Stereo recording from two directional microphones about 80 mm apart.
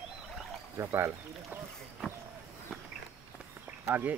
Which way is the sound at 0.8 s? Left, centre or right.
Right.